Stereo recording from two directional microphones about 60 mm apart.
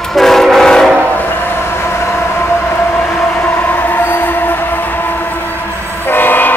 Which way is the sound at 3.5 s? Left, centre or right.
Left.